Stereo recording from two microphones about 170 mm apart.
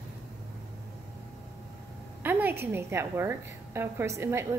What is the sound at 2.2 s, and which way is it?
A woman's voice, 10° right (ahead or behind).